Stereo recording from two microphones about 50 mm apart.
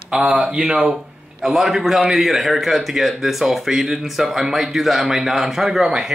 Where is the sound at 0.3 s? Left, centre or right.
Right.